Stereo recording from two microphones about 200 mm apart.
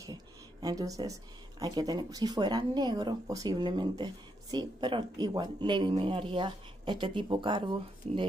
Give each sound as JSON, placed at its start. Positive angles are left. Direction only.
{"t": 0.0, "sound": "a woman's voice", "side_deg": -20}